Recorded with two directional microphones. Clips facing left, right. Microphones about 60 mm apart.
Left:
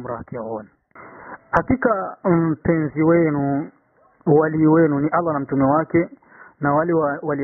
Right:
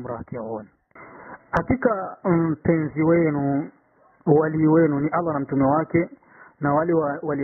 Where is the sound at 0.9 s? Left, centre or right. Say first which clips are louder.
Left 3 dB; centre.